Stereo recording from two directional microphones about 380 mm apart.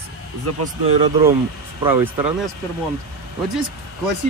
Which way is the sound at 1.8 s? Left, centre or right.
Centre.